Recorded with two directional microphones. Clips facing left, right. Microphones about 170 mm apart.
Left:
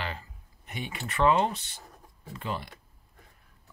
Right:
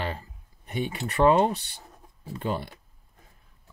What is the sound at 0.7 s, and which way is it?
Speech, 35° right (ahead or behind).